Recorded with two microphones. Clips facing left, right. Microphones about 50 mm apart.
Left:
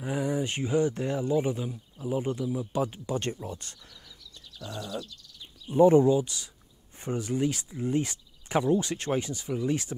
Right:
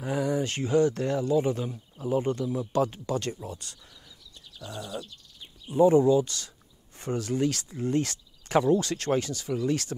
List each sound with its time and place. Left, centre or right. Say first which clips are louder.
0.2 s speech: right 1 dB; centre
2.0 s speech: right 3 dB; centre
3.4 s speech: left 1 dB; left
4.6 s a sound: left 1 dB; centre
5.8 s speech: left 1 dB; left
6.2 s speech: right 1 dB; centre